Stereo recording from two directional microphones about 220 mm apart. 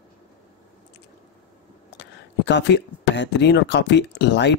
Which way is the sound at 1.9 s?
55° left (ahead or behind).